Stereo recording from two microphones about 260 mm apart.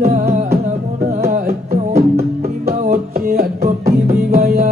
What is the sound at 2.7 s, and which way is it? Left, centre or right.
Music, right.